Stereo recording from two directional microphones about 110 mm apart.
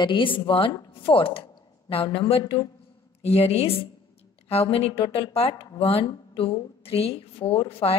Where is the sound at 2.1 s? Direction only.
60° left (ahead or behind).